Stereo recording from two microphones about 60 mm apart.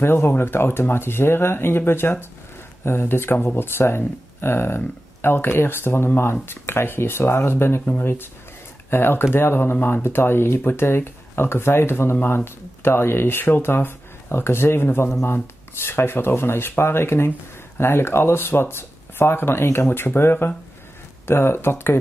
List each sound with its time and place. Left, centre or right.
0.0 s speech: left